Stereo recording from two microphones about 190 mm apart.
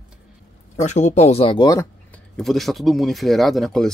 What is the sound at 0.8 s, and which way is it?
Speech, 35° left (ahead or behind).